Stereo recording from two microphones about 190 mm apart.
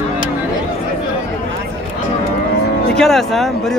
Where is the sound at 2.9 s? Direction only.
Centre (ahead or behind).